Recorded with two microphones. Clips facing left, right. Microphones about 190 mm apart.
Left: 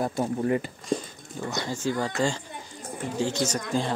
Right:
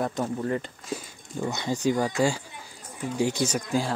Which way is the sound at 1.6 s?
15° right (ahead or behind).